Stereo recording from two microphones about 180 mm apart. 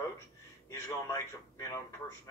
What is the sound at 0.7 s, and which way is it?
A man's voice, 15° left (ahead or behind).